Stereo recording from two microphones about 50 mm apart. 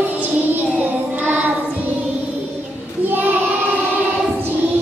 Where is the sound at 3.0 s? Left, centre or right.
Right.